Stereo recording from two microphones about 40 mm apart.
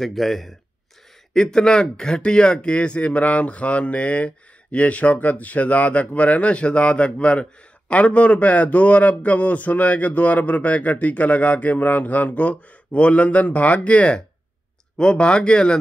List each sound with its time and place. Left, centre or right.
0.0 s speech: centre
1.3 s a man's voice: centre